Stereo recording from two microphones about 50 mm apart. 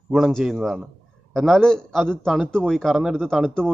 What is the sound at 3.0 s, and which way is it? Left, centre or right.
Speech, centre.